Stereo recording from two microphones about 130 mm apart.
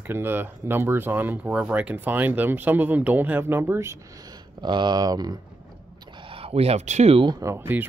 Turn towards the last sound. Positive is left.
turn(degrees=-15)  # may be behind; listen again after turning